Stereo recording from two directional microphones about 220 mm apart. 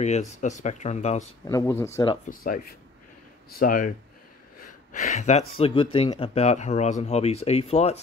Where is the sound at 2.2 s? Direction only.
40° left (ahead or behind).